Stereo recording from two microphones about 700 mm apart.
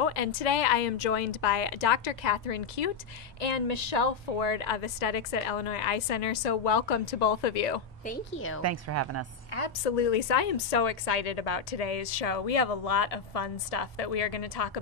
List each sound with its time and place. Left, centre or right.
0.0 s a woman's voice: left
8.0 s a woman's voice: centre
8.6 s a woman's voice: right
9.5 s a woman's voice: left
9.8 s a woman's voice: left